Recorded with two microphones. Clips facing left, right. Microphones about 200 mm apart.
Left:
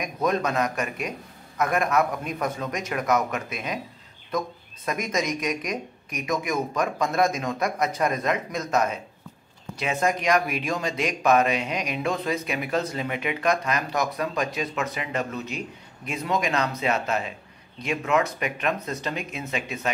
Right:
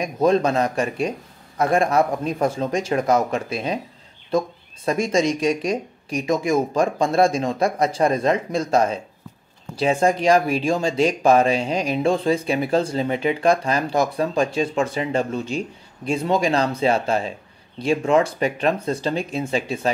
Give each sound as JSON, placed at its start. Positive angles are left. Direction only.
{"t": 0.0, "sound": "speech", "side_deg": -30}